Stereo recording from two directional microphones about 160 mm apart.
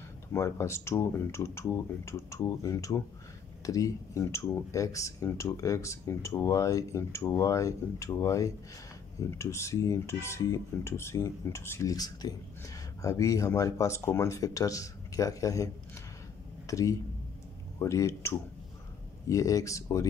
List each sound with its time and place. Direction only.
0.3 s speech: 15° left (ahead or behind)